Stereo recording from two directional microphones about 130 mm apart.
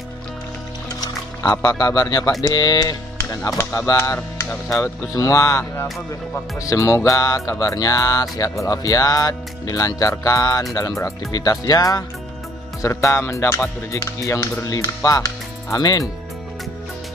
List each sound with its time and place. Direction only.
1.5 s music: 30° left (ahead or behind)
2.4 s speech: 30° left (ahead or behind)
4.6 s music: 25° left (ahead or behind)